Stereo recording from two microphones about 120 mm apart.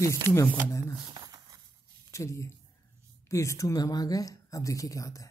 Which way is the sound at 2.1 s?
25° left (ahead or behind).